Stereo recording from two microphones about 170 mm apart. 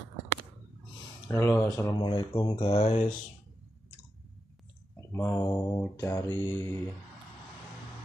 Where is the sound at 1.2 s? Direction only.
15° left (ahead or behind).